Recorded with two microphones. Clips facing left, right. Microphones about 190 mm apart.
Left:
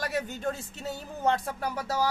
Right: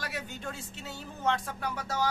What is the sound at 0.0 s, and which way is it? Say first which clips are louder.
A man's voice: left 8 dB; 45° left (ahead or behind).